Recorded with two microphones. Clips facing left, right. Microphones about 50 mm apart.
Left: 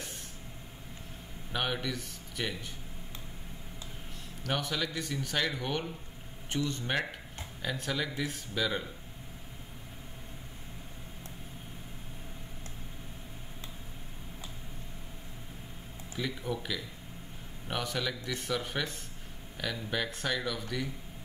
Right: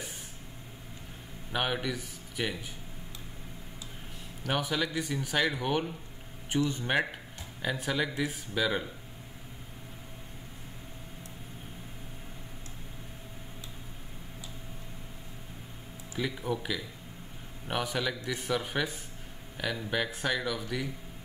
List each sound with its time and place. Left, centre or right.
1.5 s a man's voice: centre
4.4 s speech: centre
16.2 s speech: centre